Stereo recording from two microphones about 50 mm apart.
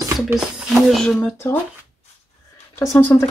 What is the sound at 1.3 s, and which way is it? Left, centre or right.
Speech, left.